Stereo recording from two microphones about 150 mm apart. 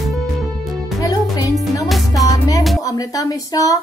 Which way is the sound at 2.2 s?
25° left (ahead or behind).